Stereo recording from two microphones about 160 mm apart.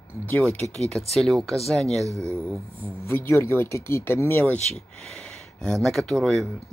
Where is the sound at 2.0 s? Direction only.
20° right (ahead or behind).